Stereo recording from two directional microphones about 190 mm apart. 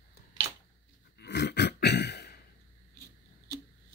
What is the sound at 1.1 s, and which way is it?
Throat clearing, 60° left (ahead or behind).